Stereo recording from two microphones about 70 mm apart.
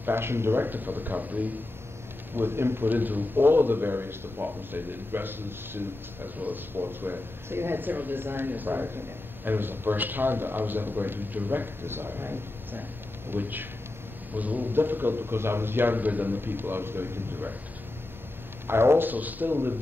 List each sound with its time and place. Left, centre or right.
0.0 s a man's voice: right
2.3 s a man's voice: right
18.7 s a man's voice: right